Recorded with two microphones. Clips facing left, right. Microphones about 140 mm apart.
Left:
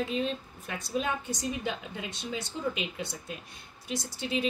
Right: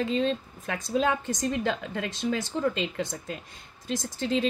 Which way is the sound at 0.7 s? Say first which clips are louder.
Right 6 dB; 90° right.